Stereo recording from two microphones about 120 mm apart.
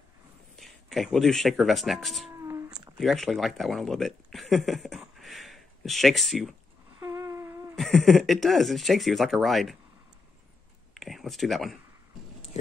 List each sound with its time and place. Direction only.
0.6 s speech: centre (ahead or behind)
7.0 s a sound: 20° right (ahead or behind)
7.7 s speech: centre (ahead or behind)
11.0 s speech: centre (ahead or behind)